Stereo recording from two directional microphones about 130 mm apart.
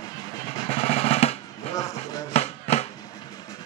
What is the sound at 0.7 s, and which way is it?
Drum, 50° left (ahead or behind).